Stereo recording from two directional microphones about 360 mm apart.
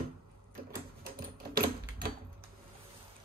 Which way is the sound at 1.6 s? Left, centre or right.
Right.